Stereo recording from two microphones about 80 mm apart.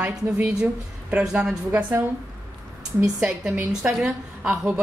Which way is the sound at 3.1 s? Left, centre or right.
Centre.